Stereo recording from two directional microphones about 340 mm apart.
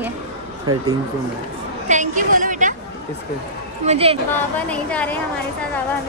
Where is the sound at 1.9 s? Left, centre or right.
Right.